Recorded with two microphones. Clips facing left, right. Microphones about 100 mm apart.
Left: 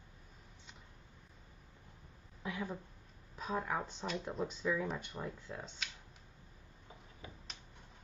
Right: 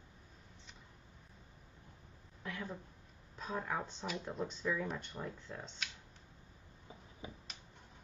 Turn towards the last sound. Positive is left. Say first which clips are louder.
# right 3 dB
turn(degrees=-20)  # may be behind; listen again after turning